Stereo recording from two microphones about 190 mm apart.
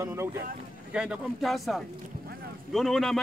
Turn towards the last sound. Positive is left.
turn(degrees=0)  # may be behind; listen again after turning